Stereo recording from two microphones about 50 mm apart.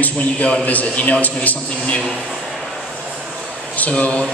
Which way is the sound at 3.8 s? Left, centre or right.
Left.